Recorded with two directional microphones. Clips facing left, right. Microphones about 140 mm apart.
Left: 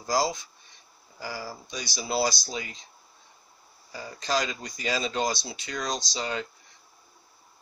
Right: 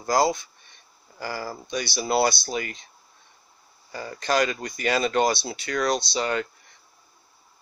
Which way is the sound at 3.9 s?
65° right (ahead or behind).